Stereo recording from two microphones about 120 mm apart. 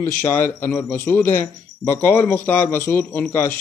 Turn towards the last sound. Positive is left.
turn(degrees=20)  # may be behind; listen again after turning